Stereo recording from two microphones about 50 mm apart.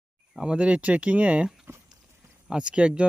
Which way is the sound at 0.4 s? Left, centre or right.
Right.